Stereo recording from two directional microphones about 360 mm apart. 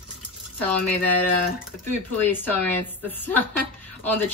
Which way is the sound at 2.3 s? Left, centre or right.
Centre.